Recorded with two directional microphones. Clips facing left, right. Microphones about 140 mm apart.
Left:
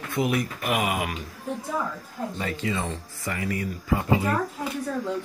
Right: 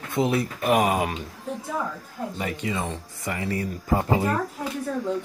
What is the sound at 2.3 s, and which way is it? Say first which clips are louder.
Speech: even; 15° right (ahead or behind).